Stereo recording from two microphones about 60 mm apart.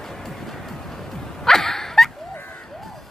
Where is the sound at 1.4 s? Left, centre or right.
Centre.